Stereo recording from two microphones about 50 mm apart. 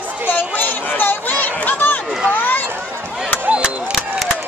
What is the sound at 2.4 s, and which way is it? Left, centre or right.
Run, left.